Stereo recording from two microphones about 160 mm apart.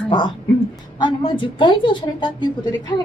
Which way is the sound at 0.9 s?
30° left (ahead or behind).